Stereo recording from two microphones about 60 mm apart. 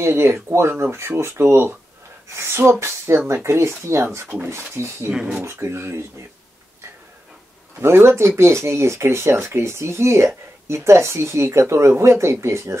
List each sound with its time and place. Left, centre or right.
0.0 s speech: right
5.1 s speech: centre
5.4 s speech: right
7.8 s speech: right